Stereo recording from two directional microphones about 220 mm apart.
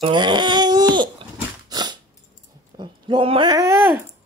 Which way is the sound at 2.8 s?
20° right (ahead or behind).